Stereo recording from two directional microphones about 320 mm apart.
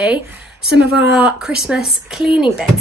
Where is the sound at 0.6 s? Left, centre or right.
Right.